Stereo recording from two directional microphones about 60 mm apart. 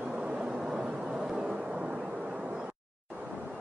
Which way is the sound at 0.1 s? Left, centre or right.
Right.